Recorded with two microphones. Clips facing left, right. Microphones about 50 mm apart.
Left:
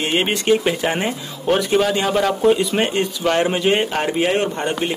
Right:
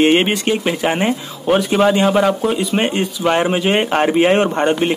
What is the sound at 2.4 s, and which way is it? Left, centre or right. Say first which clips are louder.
Speech: left 3 dB; centre.